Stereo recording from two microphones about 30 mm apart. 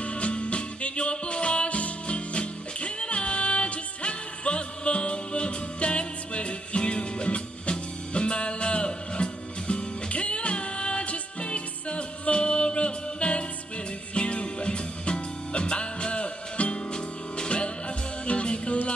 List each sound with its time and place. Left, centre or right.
0.0 s music: left